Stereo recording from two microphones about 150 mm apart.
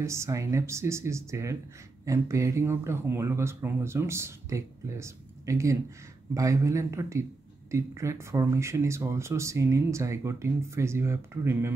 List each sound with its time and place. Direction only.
0.0 s speech: 20° right (ahead or behind)